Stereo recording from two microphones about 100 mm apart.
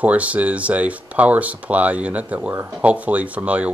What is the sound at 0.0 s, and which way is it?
Speech, 15° right (ahead or behind).